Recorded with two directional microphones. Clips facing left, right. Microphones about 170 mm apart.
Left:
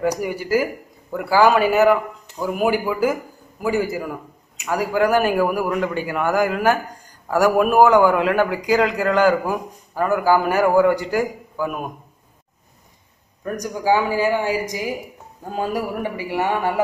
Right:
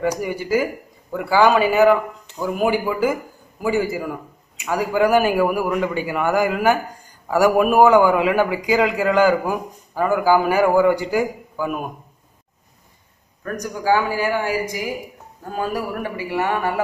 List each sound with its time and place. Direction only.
0.0 s a man's voice: 5° left (ahead or behind)
13.4 s a man's voice: 15° left (ahead or behind)